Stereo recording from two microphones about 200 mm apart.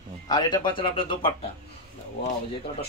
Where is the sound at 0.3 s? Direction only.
20° left (ahead or behind).